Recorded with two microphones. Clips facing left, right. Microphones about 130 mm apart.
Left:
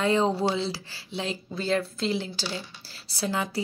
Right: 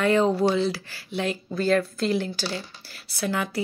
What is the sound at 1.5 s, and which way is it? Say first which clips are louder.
Speech: right 5 dB; 25° left (ahead or behind).